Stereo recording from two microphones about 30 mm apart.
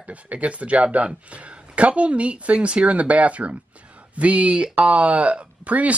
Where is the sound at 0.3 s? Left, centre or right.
Right.